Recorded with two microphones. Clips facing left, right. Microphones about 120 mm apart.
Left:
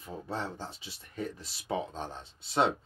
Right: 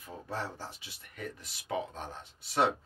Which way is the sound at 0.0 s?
25° left (ahead or behind).